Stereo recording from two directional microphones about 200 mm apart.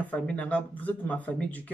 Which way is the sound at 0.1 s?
5° left (ahead or behind).